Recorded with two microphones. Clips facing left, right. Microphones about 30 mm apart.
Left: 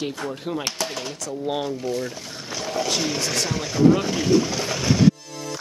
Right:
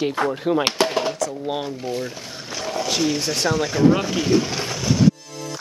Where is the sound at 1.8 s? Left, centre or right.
Centre.